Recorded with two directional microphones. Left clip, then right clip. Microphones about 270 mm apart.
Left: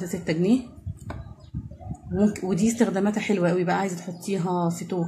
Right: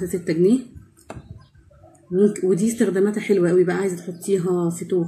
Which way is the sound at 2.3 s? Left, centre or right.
Left.